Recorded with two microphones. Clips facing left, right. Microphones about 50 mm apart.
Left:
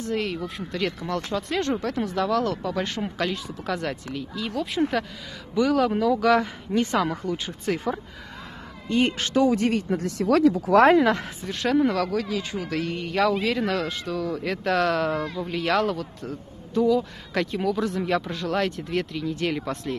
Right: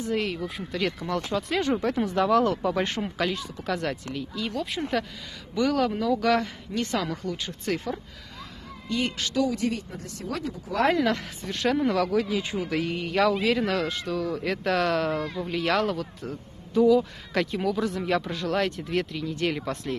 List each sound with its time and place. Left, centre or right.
0.1 s speech: centre
3.0 s speech: centre
8.8 s a woman's voice: left
9.6 s speech: left
10.0 s speech: left
11.0 s speech: centre
11.4 s speech: centre